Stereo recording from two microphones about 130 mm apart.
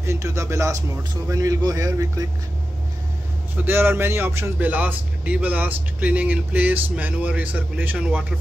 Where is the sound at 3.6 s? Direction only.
15° right (ahead or behind).